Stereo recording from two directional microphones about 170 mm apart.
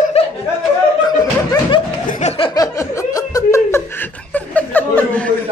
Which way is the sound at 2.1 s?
35° left (ahead or behind).